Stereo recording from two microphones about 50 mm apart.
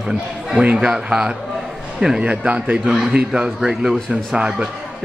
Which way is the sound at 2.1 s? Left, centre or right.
Right.